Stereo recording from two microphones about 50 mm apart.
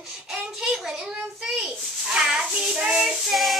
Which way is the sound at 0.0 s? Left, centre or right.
Centre.